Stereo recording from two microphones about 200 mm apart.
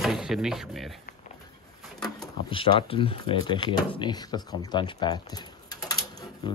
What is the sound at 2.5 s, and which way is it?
Speech, 25° left (ahead or behind).